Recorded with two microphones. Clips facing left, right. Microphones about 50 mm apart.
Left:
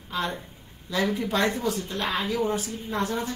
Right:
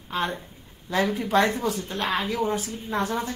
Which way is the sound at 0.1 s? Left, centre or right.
Right.